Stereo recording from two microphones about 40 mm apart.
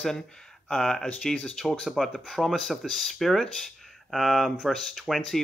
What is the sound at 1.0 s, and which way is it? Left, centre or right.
Speech, left.